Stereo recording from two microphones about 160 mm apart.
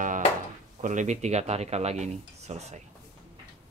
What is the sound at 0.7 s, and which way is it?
Speech, 50° right (ahead or behind).